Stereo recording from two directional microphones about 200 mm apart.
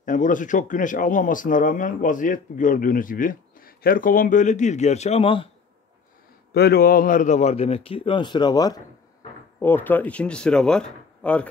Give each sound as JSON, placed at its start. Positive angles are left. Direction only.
{"t": 0.0, "sound": "speech", "side_deg": 40}
{"t": 6.5, "sound": "speech", "side_deg": 50}